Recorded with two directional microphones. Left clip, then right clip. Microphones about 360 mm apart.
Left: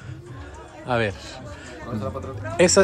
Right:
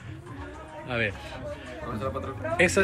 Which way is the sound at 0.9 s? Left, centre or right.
Centre.